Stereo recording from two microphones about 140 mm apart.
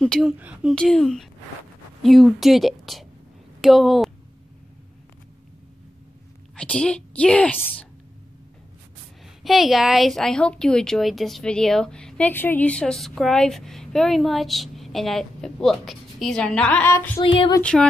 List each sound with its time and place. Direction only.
0.0 s speech: centre (ahead or behind)
0.7 s speech: 5° left (ahead or behind)
6.5 s a woman's voice: 5° left (ahead or behind)
9.4 s speech: centre (ahead or behind)
17.2 s speech: 40° left (ahead or behind)
17.6 s a woman's voice: 5° left (ahead or behind)